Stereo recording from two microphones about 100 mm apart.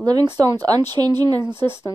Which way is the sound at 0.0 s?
45° right (ahead or behind).